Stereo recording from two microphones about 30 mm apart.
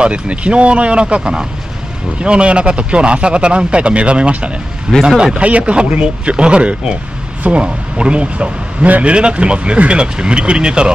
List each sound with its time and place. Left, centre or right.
0.0 s a man's voice: right
4.9 s speech: right
5.4 s a man's voice: right